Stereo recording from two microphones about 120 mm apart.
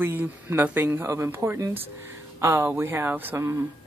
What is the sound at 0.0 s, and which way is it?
A woman's voice, 15° right (ahead or behind).